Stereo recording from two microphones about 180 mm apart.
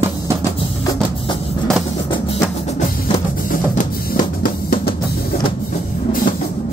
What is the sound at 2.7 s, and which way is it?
Music, 45° left (ahead or behind).